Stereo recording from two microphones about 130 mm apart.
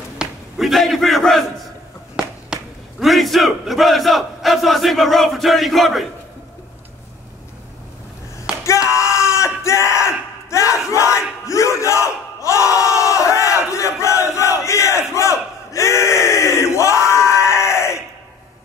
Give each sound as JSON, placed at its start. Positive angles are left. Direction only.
{"t": 0.2, "sound": "speech", "side_deg": 0}
{"t": 8.6, "sound": "yell", "side_deg": 20}
{"t": 10.9, "sound": "battle cry", "side_deg": 20}